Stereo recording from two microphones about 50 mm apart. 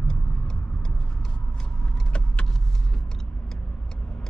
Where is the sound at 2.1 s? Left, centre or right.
Left.